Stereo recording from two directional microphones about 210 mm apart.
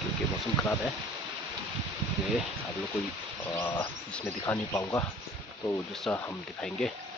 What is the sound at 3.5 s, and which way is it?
Speech, 5° left (ahead or behind).